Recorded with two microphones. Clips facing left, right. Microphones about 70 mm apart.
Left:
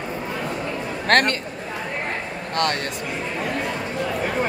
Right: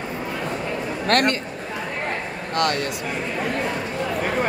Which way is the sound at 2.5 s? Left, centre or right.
Left.